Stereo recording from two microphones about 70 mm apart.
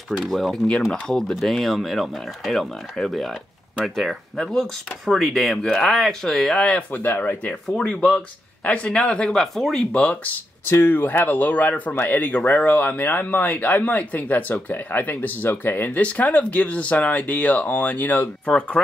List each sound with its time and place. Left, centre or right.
0.2 s speech: centre
7.0 s speech: left
7.7 s speech: centre
10.7 s speech: left